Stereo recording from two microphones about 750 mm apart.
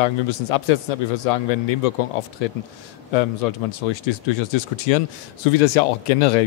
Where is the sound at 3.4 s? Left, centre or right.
Left.